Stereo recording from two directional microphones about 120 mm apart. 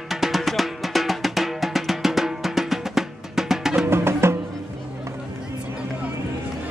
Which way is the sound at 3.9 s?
20° right (ahead or behind).